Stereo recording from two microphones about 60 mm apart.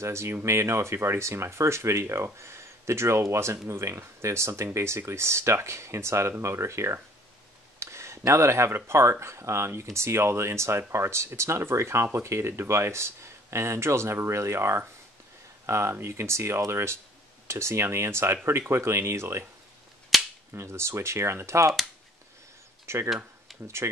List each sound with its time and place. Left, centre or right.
0.0 s speech: right
7.8 s a sound: right
8.3 s speech: right
20.1 s cap gun: centre
20.5 s speech: right
23.0 s tick-tock: centre
23.8 s speech: right